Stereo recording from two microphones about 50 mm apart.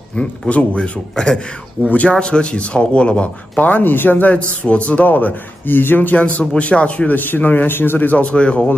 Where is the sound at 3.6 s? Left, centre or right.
Left.